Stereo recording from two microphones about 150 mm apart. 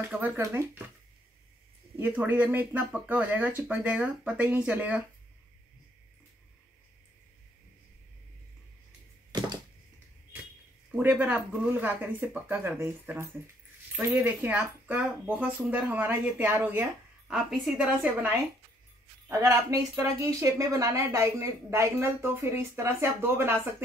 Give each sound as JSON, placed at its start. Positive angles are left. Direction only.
{"t": 0.0, "sound": "speech", "side_deg": -15}
{"t": 2.0, "sound": "speech", "side_deg": -15}
{"t": 9.3, "sound": "a sound", "side_deg": -30}
{"t": 10.9, "sound": "speech", "side_deg": -10}
{"t": 17.3, "sound": "a woman's voice", "side_deg": 0}
{"t": 19.2, "sound": "a woman's voice", "side_deg": -20}